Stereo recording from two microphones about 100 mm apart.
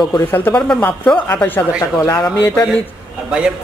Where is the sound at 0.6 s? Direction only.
10° left (ahead or behind).